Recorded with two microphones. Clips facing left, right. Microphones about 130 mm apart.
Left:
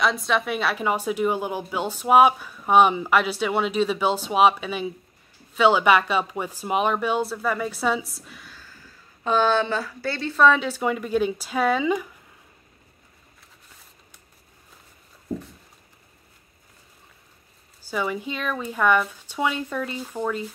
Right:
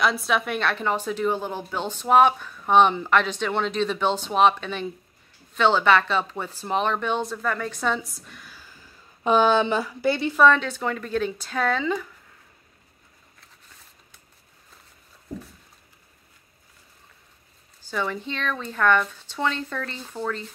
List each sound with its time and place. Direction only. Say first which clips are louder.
0.0 s a woman's voice: even; centre (ahead or behind)
8.5 s speech: left 1 dB; 15° right (ahead or behind)
10.4 s a woman's voice: left 1 dB; 5° left (ahead or behind)
17.8 s a woman's voice: left 1 dB; 10° left (ahead or behind)